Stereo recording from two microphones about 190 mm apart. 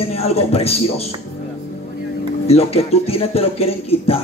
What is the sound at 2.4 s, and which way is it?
A man's voice, 35° left (ahead or behind).